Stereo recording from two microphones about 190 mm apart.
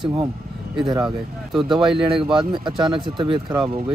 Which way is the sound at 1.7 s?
30° right (ahead or behind).